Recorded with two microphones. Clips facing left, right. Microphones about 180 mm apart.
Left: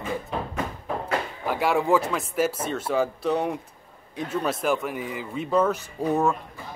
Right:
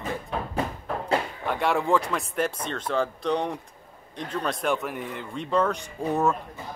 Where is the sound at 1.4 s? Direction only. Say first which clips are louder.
Left 6 dB; 5° left (ahead or behind).